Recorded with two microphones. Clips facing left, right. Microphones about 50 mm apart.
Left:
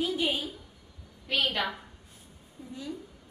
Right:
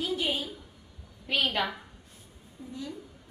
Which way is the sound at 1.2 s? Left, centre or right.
Centre.